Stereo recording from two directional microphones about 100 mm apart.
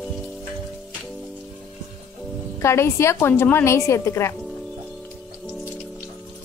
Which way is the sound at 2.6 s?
25° left (ahead or behind).